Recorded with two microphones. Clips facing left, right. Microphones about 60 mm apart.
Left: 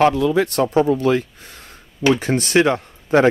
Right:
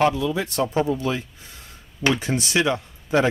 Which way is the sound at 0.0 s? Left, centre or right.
Left.